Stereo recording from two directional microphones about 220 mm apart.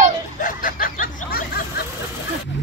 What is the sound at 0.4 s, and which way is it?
Snicker, 35° left (ahead or behind).